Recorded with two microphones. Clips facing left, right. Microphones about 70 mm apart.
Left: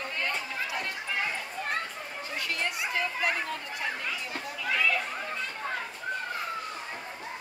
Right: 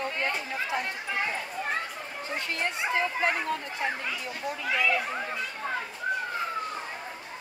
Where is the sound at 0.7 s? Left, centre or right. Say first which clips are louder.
Right 3 dB; centre.